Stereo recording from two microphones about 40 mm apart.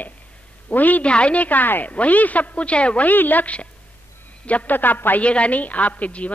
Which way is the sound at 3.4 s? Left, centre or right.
Left.